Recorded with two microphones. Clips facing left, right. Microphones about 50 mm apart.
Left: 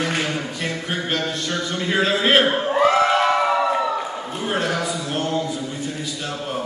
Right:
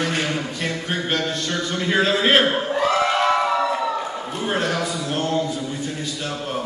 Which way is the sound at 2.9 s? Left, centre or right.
Centre.